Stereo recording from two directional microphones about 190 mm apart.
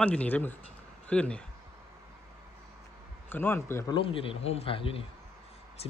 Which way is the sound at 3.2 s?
10° left (ahead or behind).